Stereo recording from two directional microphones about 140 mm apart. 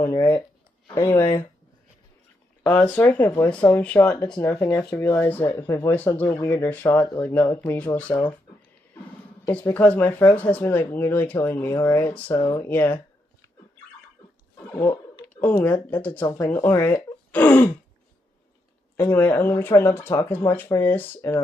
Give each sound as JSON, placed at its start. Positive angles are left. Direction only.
{"t": 0.8, "sound": "speech", "side_deg": 20}
{"t": 2.7, "sound": "speech", "side_deg": 10}
{"t": 9.5, "sound": "speech", "side_deg": 10}
{"t": 12.4, "sound": "speech", "side_deg": 25}
{"t": 12.6, "sound": "speech", "side_deg": 15}
{"t": 15.6, "sound": "speech", "side_deg": 10}
{"t": 18.9, "sound": "speech", "side_deg": 15}